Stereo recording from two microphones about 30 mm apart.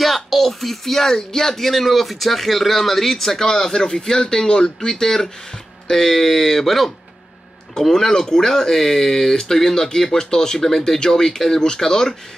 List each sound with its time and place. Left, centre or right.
0.0 s speech: centre
7.8 s speech: centre